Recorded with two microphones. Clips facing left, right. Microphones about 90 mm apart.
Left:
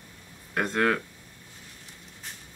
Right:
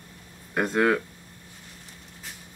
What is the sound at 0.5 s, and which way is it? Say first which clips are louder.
Speech: right 3 dB; 10° right (ahead or behind).